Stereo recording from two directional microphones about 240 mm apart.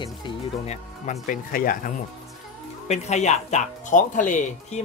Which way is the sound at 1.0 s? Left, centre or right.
Left.